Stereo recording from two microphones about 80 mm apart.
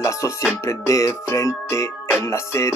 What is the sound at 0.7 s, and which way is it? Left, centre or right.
Music, left.